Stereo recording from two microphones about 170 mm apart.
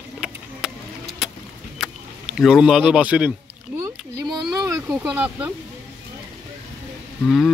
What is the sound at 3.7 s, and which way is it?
Rowboat, 5° right (ahead or behind).